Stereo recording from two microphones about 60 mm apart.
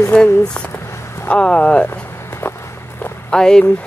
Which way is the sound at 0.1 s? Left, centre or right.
Centre.